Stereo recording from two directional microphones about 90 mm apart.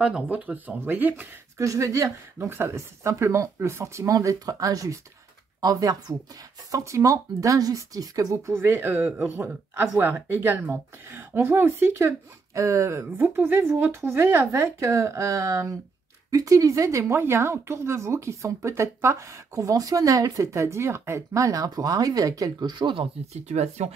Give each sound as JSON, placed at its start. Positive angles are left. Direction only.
{"t": 0.0, "sound": "speech", "side_deg": -15}
{"t": 1.6, "sound": "speech", "side_deg": -35}
{"t": 8.5, "sound": "speech", "side_deg": -25}
{"t": 13.2, "sound": "speech", "side_deg": -20}